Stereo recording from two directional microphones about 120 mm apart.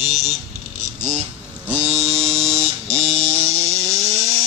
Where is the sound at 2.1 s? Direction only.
60° right (ahead or behind).